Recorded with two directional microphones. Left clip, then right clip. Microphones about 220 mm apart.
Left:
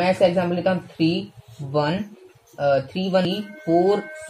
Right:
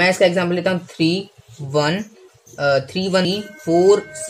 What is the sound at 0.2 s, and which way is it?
Speech, 25° right (ahead or behind).